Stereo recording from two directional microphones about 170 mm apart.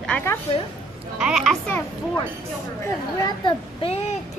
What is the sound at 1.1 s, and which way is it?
Speech, 5° right (ahead or behind).